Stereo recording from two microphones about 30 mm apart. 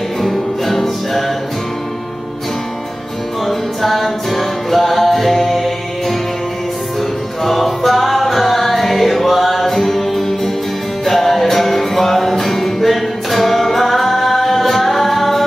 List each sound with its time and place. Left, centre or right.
0.2 s music: centre
3.4 s music: centre